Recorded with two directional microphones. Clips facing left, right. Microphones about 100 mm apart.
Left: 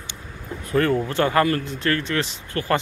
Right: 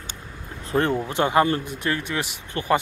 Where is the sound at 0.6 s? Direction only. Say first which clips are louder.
Left 2 dB; 25° right (ahead or behind).